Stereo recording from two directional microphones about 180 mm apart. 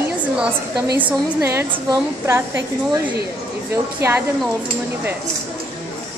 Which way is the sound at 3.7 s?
15° right (ahead or behind).